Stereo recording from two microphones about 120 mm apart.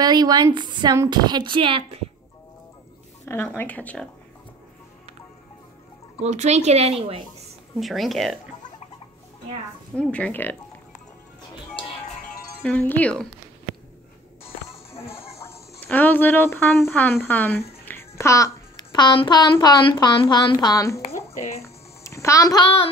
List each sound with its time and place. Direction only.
0.0 s a woman's voice: 35° right (ahead or behind); by 2.0 s 50° right (ahead or behind)
3.3 s speech: 15° left (ahead or behind)
6.2 s speech: 70° right (ahead or behind); by 7.2 s 50° right (ahead or behind)
7.8 s speech: centre (ahead or behind)
9.9 s speech: 10° left (ahead or behind)
12.6 s speech: 10° left (ahead or behind)
15.0 s music: 20° left (ahead or behind)
15.3 s speech: 20° left (ahead or behind)
17.8 s a sound: 20° left (ahead or behind)
18.9 s a woman's voice: 40° left (ahead or behind)
21.6 s music: 25° left (ahead or behind)